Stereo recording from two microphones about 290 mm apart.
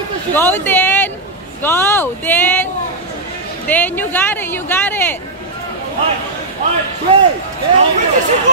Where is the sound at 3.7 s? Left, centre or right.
Centre.